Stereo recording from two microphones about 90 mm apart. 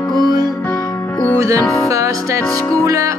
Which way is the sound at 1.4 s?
35° right (ahead or behind).